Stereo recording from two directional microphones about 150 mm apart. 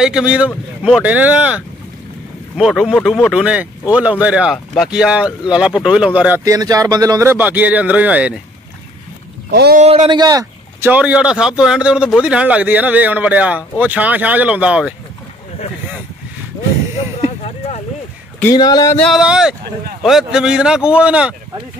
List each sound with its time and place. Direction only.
0.0 s a man's voice: 5° right (ahead or behind)
6.4 s a man's voice: 25° right (ahead or behind)
9.5 s speech: 90° right
9.8 s speech: 45° right (ahead or behind)
10.0 s speech: 25° right (ahead or behind)
10.9 s a man's voice: 10° right (ahead or behind)
17.4 s a sound: 45° left (ahead or behind)
18.5 s speech: 25° left (ahead or behind)
18.9 s speech: 5° left (ahead or behind)